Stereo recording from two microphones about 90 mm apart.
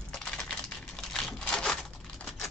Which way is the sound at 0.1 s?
10° left (ahead or behind).